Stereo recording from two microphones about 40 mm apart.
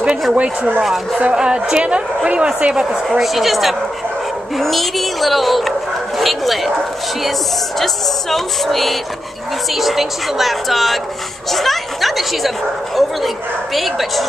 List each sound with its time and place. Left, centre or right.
0.3 s speech: right
0.8 s speech: centre
1.3 s a woman's voice: right
2.9 s speech: centre
7.8 s speech: centre